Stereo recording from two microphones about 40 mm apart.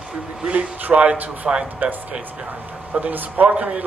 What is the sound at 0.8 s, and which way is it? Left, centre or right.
Speech, right.